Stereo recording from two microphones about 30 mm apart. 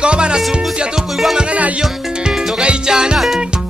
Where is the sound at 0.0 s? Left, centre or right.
Right.